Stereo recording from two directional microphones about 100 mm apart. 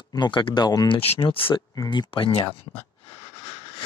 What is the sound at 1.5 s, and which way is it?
Speech, 50° left (ahead or behind).